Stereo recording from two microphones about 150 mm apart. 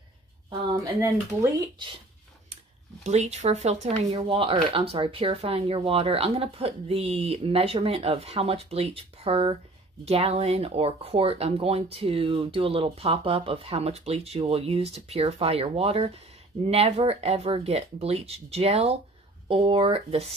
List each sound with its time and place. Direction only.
0.5 s a sound: 35° right (ahead or behind)
1.0 s speech: 20° right (ahead or behind)
2.5 s speech: 50° right (ahead or behind)